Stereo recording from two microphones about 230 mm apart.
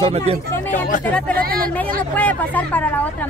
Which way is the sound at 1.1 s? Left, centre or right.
Centre.